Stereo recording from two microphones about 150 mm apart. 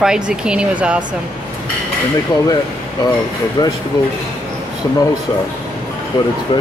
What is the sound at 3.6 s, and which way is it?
Speech, 25° left (ahead or behind).